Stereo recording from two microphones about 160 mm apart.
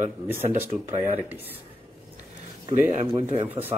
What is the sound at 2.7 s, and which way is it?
Speech, 45° right (ahead or behind).